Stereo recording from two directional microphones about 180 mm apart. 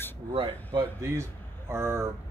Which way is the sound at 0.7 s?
15° right (ahead or behind).